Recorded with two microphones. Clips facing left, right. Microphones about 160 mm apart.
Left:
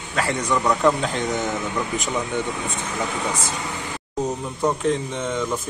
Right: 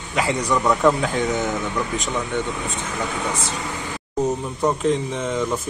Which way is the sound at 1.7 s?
10° left (ahead or behind).